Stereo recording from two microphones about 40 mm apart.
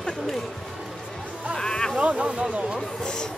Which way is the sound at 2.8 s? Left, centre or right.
Centre.